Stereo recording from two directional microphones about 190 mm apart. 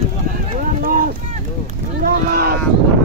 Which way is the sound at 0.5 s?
45° right (ahead or behind).